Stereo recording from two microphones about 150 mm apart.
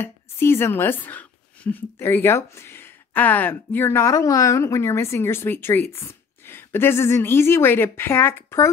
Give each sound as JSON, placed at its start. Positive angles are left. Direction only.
{"t": 0.0, "sound": "speech", "side_deg": 15}